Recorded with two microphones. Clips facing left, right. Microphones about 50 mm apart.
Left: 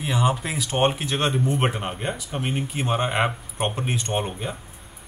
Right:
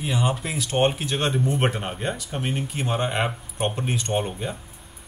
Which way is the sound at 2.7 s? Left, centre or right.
Centre.